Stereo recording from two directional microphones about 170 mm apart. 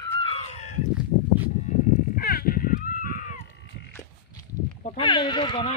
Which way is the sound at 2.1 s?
60° left (ahead or behind).